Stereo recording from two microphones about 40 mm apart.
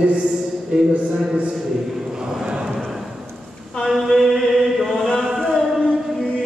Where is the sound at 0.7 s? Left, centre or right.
Right.